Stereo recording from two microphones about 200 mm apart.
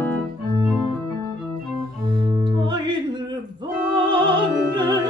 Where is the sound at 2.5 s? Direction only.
20° right (ahead or behind).